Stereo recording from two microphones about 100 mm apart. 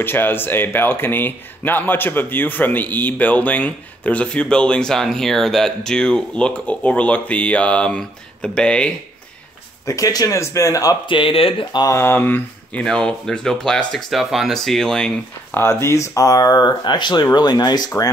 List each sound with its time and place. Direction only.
0.0 s speech: 20° left (ahead or behind)
9.8 s speech: 35° left (ahead or behind)
11.1 s speech: 60° left (ahead or behind)
11.9 s speech: 25° left (ahead or behind)
12.8 s speech: 5° left (ahead or behind)
15.5 s speech: 25° left (ahead or behind)